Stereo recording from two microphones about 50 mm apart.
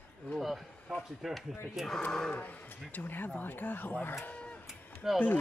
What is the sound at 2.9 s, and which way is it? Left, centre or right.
Speech, left.